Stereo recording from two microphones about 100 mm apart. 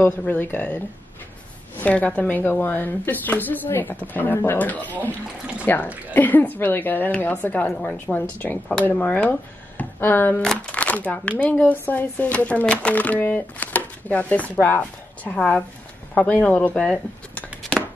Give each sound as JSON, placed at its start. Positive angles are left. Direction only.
{"t": 0.3, "sound": "a woman's voice", "side_deg": 20}
{"t": 9.8, "sound": "a sound", "side_deg": 20}
{"t": 10.4, "sound": "speech", "side_deg": 10}